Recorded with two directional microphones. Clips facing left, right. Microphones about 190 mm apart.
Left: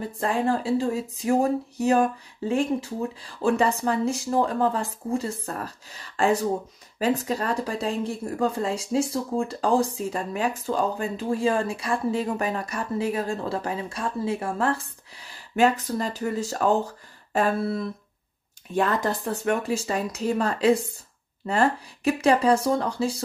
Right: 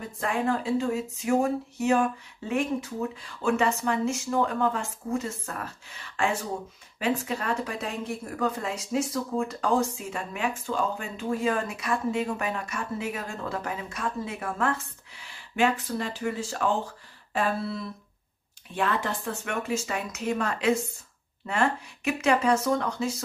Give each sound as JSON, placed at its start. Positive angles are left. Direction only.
{"t": 0.0, "sound": "speech", "side_deg": 35}